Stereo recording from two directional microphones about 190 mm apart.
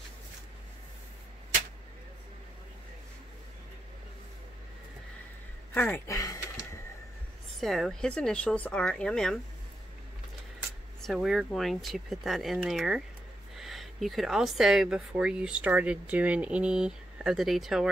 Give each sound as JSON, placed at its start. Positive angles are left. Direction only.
{"t": 5.8, "sound": "a sound", "side_deg": 10}
{"t": 7.6, "sound": "speech", "side_deg": 0}
{"t": 11.0, "sound": "speech", "side_deg": 0}